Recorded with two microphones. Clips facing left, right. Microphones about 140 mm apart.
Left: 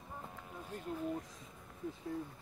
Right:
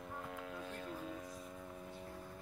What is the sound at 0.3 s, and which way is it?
Music, 90° right.